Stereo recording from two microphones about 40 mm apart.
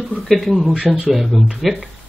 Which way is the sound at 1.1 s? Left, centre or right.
Centre.